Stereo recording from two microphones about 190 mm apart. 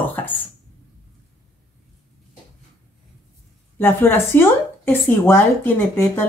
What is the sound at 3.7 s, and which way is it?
A woman's voice, 10° left (ahead or behind).